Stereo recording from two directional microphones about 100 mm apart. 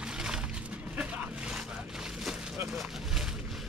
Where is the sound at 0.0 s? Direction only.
5° right (ahead or behind).